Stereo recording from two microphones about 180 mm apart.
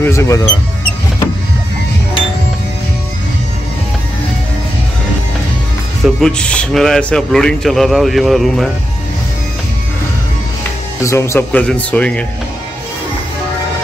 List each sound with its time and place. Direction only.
0.0 s speech: 15° left (ahead or behind)
6.0 s a man's voice: 5° left (ahead or behind)
11.0 s speech: 15° left (ahead or behind)